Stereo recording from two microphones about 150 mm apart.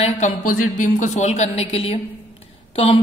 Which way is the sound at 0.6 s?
55° left (ahead or behind).